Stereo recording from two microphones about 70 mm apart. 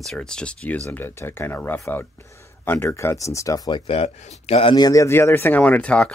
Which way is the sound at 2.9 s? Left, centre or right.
Left.